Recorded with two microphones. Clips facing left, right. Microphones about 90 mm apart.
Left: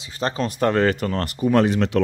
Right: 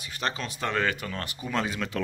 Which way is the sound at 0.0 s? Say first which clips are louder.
Left 7 dB; 35° left (ahead or behind).